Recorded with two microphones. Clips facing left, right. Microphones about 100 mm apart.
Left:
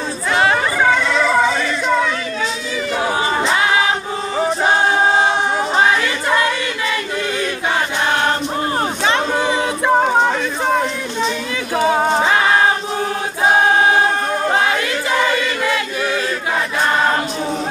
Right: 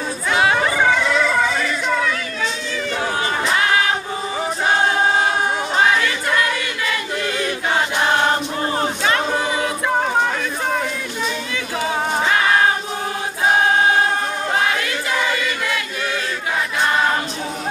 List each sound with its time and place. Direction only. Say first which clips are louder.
0.3 s chatter: left 1 dB; centre (ahead or behind)
1.3 s music: left 3 dB; 15° left (ahead or behind)
3.0 s crowd: left 4 dB; 15° left (ahead or behind)
5.1 s choir: left 3 dB; 25° left (ahead or behind)
8.7 s a sound: left 1 dB; 25° left (ahead or behind)